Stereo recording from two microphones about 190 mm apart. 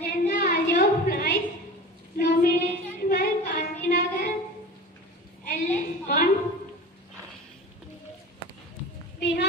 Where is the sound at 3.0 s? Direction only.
50° left (ahead or behind).